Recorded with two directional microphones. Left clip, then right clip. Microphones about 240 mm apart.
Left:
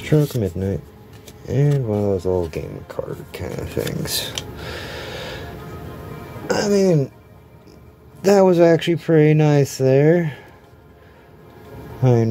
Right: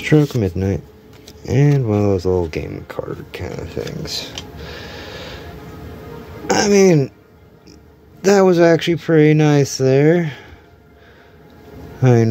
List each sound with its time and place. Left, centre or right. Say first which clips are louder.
0.0 s speech: right 4 dB; centre
3.5 s a sound: left 4 dB; centre
6.4 s speech: right 5 dB; right
8.2 s speech: right 1 dB; centre
12.0 s speech: right 3 dB; centre